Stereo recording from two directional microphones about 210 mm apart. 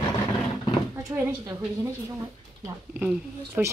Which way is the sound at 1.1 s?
10° right (ahead or behind).